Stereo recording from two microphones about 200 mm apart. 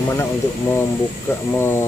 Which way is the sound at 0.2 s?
10° left (ahead or behind).